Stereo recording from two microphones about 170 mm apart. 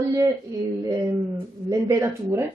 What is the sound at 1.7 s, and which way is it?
Speech, 20° right (ahead or behind).